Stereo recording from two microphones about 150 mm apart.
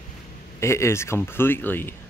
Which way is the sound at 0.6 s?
20° left (ahead or behind).